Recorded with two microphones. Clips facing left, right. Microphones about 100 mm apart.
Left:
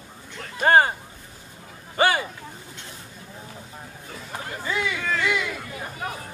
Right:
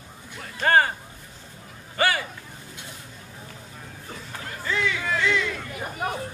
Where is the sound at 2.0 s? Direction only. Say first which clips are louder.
Left 3 dB; 25° left (ahead or behind).